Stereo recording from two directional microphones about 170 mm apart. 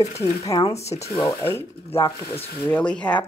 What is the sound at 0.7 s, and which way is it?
Speech, 40° left (ahead or behind).